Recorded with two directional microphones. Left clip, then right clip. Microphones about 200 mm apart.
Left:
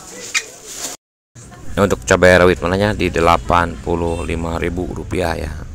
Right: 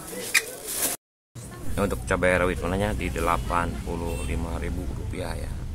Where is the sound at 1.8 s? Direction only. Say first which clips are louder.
Left 12 dB; 35° left (ahead or behind).